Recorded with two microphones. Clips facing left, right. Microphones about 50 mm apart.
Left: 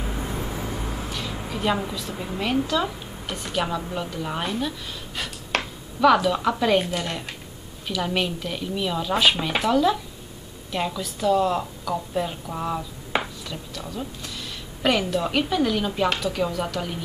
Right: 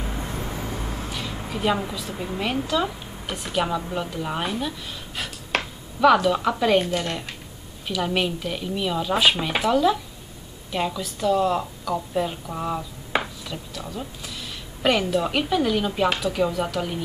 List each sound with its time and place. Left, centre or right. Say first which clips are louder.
0.0 s a woman's voice: left 1 dB; centre